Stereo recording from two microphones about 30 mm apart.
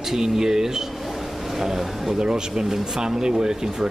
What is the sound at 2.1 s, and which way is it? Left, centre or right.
Speech, right.